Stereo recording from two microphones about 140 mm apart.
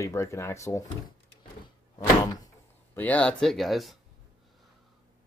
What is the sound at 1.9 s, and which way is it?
Door, 30° left (ahead or behind).